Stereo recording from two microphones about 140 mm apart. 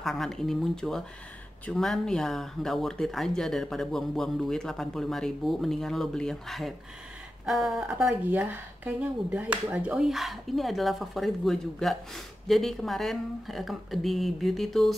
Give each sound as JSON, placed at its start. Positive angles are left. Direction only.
{"t": 0.0, "sound": "speech", "side_deg": 0}